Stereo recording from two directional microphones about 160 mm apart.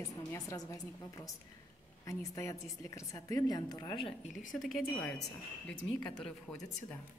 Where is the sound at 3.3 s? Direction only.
25° left (ahead or behind).